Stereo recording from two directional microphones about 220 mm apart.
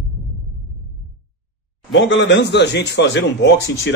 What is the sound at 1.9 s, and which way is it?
A man's voice, 55° left (ahead or behind).